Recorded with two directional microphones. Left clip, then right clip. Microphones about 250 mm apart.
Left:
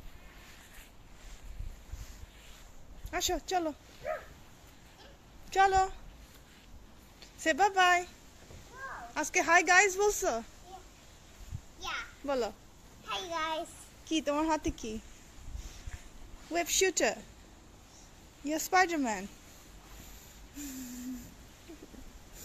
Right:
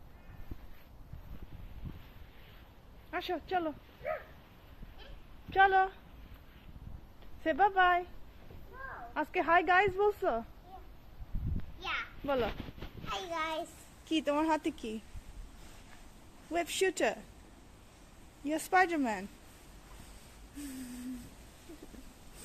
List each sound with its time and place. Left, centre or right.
3.1 s speech: centre
5.5 s speech: centre
7.4 s speech: centre
9.1 s speech: centre
11.8 s a sound: centre
13.1 s a child's voice: centre
16.5 s speech: centre
18.4 s speech: centre